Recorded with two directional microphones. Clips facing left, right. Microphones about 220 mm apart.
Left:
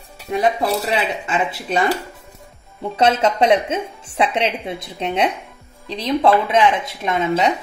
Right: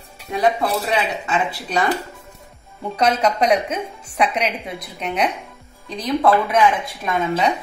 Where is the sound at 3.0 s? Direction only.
25° left (ahead or behind).